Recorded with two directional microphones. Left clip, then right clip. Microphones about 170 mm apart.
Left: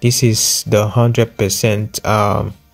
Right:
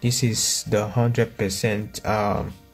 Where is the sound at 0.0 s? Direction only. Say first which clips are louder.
Left 9 dB; 35° left (ahead or behind).